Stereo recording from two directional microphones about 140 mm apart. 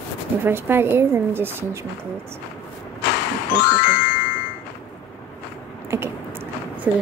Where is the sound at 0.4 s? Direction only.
15° right (ahead or behind).